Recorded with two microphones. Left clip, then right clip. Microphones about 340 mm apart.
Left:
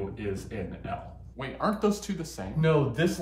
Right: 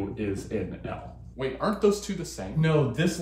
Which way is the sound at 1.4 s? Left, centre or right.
Centre.